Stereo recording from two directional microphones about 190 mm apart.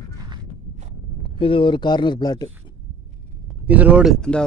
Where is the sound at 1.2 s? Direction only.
30° left (ahead or behind).